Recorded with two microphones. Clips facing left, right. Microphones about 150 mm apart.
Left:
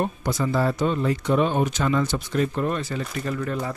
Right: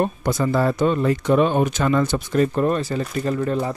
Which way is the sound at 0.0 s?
55° right (ahead or behind).